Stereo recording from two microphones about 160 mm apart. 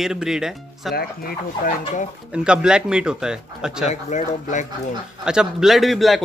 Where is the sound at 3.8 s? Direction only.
50° left (ahead or behind).